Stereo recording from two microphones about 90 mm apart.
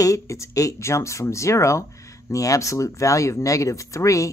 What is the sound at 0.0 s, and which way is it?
Speech, 35° left (ahead or behind).